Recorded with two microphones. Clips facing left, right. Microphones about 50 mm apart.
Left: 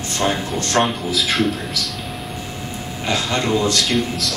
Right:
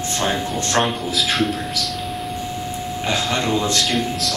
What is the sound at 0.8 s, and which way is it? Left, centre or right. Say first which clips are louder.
Speech: left 1 dB; centre.